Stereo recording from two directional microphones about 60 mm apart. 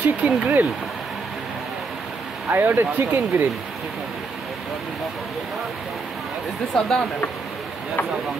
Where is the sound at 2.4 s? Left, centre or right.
Right.